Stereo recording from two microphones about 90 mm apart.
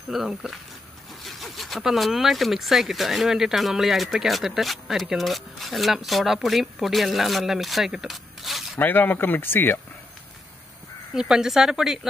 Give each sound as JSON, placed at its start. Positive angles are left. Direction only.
{"t": 0.1, "sound": "speech", "side_deg": -5}
{"t": 8.7, "sound": "speech", "side_deg": 20}
{"t": 11.1, "sound": "speech", "side_deg": -5}